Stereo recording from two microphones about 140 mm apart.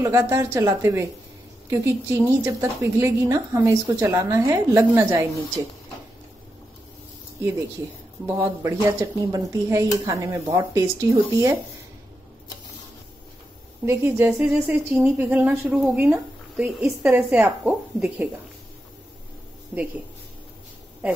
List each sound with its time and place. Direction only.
0.0 s a woman's voice: 20° right (ahead or behind)
8.4 s a woman's voice: 20° right (ahead or behind)
13.8 s speech: 15° right (ahead or behind)